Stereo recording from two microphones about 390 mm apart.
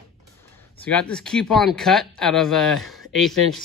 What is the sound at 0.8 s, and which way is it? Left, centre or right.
Speech, centre.